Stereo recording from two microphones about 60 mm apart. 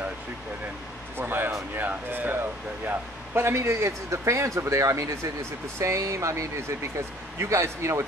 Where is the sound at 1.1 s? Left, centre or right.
Right.